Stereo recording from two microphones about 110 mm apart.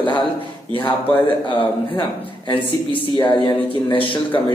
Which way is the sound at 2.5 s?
50° left (ahead or behind).